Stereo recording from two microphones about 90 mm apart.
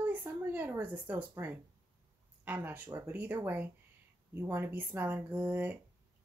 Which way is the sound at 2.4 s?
20° right (ahead or behind).